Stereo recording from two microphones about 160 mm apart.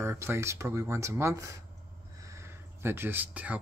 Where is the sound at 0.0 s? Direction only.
15° right (ahead or behind).